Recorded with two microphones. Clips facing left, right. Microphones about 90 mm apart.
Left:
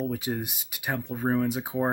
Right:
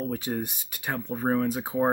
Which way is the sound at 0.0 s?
5° left (ahead or behind).